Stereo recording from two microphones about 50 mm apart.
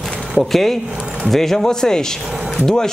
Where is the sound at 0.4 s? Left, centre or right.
Centre.